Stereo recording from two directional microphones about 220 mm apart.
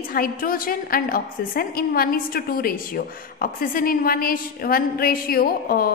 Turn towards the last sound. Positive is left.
turn(degrees=45)  # may be behind; listen again after turning